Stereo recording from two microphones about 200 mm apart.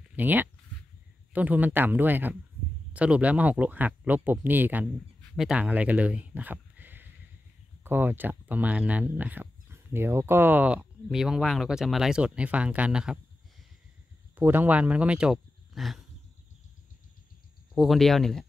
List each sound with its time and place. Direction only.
0.1 s speech: 10° right (ahead or behind)
14.3 s speech: 10° right (ahead or behind)
17.7 s speech: centre (ahead or behind)